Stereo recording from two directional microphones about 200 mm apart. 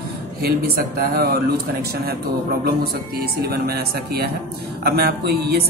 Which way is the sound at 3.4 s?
50° right (ahead or behind).